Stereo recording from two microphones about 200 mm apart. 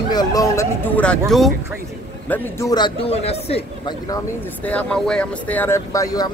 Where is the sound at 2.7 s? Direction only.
25° left (ahead or behind).